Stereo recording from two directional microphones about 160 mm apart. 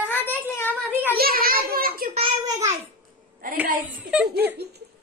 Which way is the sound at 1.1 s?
65° right (ahead or behind).